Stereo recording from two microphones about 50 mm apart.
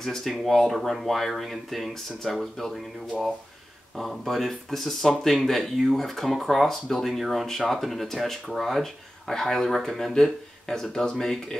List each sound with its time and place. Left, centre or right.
0.0 s speech: centre